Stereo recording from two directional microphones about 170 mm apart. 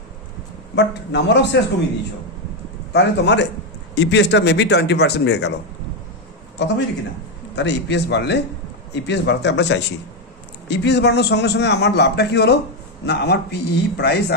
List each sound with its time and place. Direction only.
0.7 s a man's voice: 90° left
2.9 s a man's voice: 90° left
7.5 s a man's voice: 90° left